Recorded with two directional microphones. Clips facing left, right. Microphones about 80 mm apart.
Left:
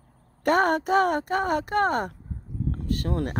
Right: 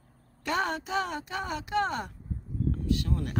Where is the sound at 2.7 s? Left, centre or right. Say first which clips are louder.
Left 3 dB; left.